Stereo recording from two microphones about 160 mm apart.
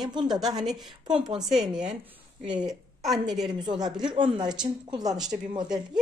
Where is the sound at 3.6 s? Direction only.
25° right (ahead or behind).